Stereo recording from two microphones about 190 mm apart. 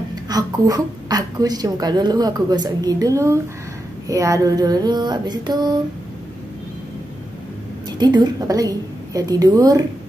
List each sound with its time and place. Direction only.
0.1 s a woman's voice: 20° right (ahead or behind)
8.0 s a woman's voice: 20° right (ahead or behind)